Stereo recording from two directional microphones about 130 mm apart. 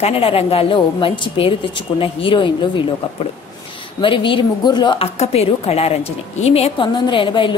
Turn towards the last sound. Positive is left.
turn(degrees=40)  # may be behind; listen again after turning